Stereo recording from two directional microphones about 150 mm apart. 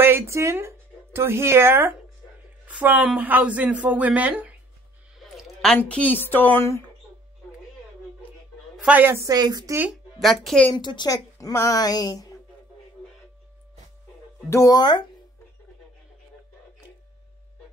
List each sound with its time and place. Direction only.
0.0 s speech: 15° right (ahead or behind)
5.3 s a sound: centre (ahead or behind)
6.2 s speech: 15° left (ahead or behind)
8.7 s a woman's voice: 10° right (ahead or behind); by 9.8 s 25° right (ahead or behind)
10.2 s a woman's voice: centre (ahead or behind)
10.7 s a woman's voice: 30° left (ahead or behind)
14.5 s a woman's voice: 25° left (ahead or behind)